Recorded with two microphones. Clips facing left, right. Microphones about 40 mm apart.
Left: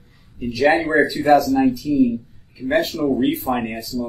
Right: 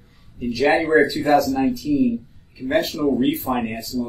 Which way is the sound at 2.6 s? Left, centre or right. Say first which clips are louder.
Left 1 dB; centre.